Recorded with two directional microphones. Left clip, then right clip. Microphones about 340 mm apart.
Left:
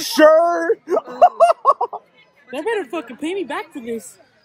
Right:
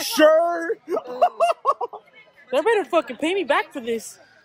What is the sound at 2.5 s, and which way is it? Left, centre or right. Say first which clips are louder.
A woman's voice: right 4 dB; centre.